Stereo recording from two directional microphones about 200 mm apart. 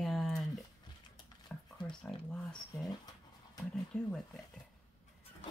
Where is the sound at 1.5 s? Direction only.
5° left (ahead or behind).